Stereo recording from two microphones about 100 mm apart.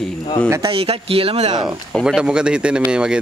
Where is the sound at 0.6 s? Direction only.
75° right (ahead or behind).